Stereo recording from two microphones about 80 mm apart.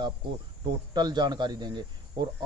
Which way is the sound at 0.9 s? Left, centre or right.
Right.